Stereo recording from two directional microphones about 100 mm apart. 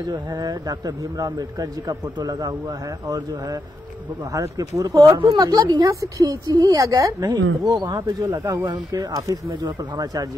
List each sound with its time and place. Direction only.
0.0 s speech: 40° right (ahead or behind)
4.3 s speech: 35° right (ahead or behind)
8.3 s speech: 25° right (ahead or behind)
8.6 s speech: 40° right (ahead or behind)